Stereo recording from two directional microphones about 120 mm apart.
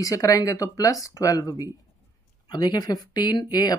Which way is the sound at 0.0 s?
25° left (ahead or behind).